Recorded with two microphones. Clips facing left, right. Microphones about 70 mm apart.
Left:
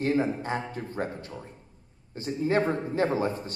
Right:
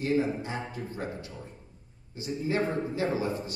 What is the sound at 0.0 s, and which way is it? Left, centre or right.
A man's voice, left.